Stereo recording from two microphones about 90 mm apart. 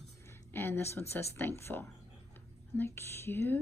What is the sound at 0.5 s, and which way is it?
Speech, 25° left (ahead or behind).